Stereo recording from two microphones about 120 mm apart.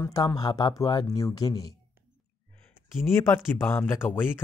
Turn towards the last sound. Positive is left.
turn(degrees=15)  # may be behind; listen again after turning